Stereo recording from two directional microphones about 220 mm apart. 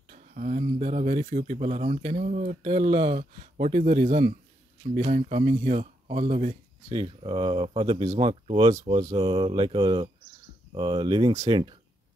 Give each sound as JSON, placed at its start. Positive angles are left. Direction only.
{"t": 0.1, "sound": "speech", "side_deg": -35}
{"t": 6.9, "sound": "speech", "side_deg": -20}